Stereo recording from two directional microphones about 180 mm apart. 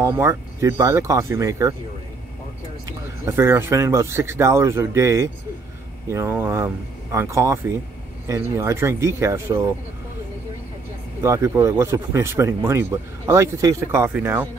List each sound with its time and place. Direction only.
0.0 s speech: 15° right (ahead or behind)
3.3 s speech: 15° right (ahead or behind)
11.2 s speech: 15° right (ahead or behind)